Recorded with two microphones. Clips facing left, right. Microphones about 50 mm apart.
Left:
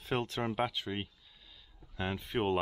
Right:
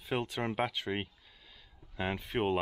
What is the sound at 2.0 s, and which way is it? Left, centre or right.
Speech, centre.